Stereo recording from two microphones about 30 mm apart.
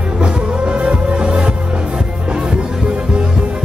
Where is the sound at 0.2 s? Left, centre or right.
Right.